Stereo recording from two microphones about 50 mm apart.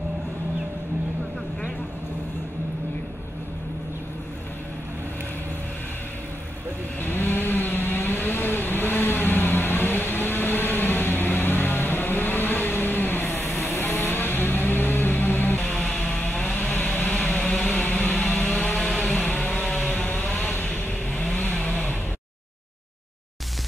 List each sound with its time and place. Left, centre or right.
7.0 s vehicle: left
15.6 s music: left
16.5 s a sound: left
20.0 s vehicle: left
21.2 s vehicle: centre
21.5 s a sound: centre